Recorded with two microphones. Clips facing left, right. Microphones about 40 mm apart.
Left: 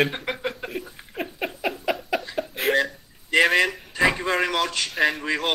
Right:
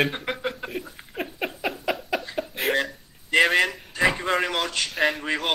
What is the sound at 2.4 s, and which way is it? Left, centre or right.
Cough, centre.